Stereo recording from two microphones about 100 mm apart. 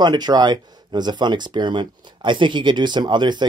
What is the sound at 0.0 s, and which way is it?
Speech, 45° right (ahead or behind).